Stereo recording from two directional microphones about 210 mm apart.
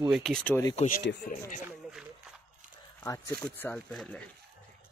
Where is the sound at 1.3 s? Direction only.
45° left (ahead or behind).